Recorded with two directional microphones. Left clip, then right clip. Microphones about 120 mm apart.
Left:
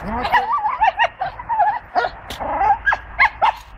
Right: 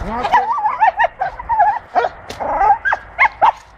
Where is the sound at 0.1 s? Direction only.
25° right (ahead or behind).